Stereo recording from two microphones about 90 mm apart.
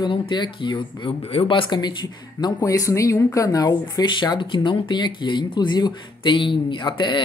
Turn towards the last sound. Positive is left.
turn(degrees=65)  # may be behind; listen again after turning